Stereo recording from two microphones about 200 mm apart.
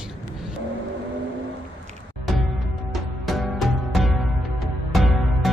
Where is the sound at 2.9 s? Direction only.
Centre (ahead or behind).